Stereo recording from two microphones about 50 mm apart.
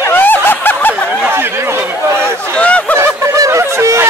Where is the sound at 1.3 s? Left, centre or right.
Right.